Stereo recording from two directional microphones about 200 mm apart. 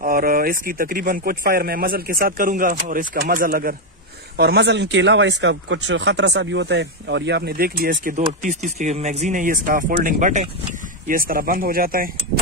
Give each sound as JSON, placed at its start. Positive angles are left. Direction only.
{"t": 0.0, "sound": "speech", "side_deg": -45}
{"t": 4.4, "sound": "speech", "side_deg": -55}